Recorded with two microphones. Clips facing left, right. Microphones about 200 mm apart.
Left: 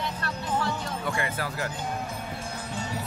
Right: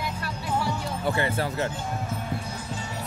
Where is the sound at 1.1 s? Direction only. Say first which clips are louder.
Right 6 dB; 30° right (ahead or behind).